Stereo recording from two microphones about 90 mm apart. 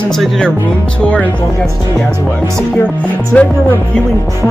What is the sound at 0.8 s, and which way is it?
Speech, 15° left (ahead or behind).